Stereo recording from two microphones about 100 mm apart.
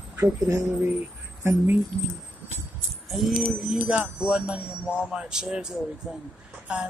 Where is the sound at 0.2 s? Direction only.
30° right (ahead or behind).